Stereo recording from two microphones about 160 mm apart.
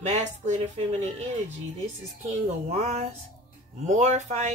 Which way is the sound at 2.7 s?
40° right (ahead or behind).